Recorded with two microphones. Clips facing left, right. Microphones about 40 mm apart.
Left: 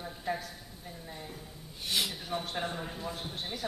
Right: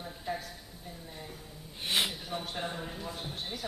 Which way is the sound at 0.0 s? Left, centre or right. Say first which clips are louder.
Left 2 dB; centre.